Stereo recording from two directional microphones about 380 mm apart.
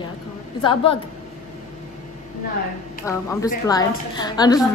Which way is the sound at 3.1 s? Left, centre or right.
Centre.